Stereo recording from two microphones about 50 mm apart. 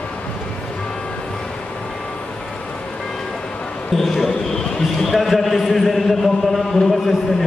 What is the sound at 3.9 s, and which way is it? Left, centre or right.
Music, centre.